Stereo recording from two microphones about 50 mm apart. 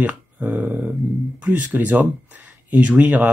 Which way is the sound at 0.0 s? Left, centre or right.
Right.